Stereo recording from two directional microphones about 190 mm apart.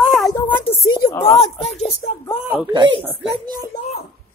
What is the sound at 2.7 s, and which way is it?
Speech, 25° right (ahead or behind).